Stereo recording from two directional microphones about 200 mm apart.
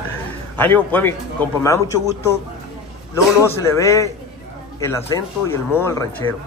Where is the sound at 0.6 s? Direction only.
10° left (ahead or behind).